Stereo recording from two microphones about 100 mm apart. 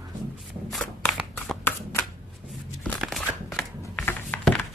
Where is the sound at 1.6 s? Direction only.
25° left (ahead or behind).